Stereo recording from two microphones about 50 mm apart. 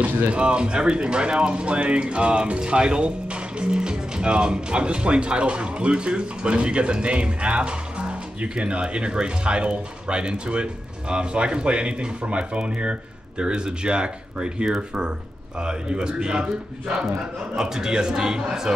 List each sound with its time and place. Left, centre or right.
0.0 s speech: right
0.4 s a man's voice: centre